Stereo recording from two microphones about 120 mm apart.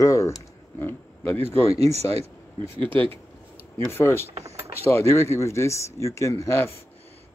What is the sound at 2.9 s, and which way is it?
Speech, 50° right (ahead or behind).